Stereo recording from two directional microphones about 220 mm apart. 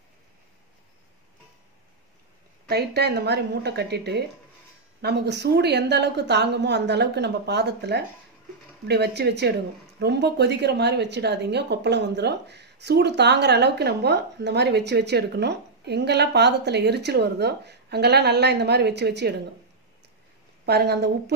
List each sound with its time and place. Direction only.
2.7 s a woman's voice: 45° right (ahead or behind)
20.6 s a woman's voice: 45° right (ahead or behind)